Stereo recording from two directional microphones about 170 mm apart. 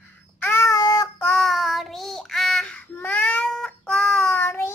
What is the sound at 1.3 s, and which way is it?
Child singing, centre (ahead or behind).